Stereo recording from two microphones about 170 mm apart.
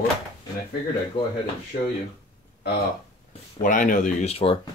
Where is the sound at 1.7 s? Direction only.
55° left (ahead or behind).